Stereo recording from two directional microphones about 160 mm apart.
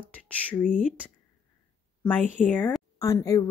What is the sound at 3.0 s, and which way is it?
Speech, 20° left (ahead or behind).